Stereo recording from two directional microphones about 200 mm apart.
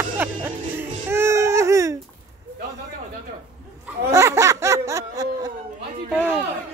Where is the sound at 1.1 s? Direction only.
15° right (ahead or behind).